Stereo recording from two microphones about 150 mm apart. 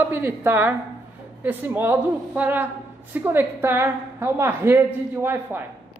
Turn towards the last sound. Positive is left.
turn(degrees=-15)  # may be behind; listen again after turning